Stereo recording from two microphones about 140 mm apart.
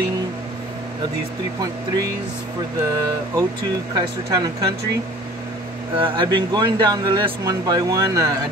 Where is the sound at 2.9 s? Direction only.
25° right (ahead or behind).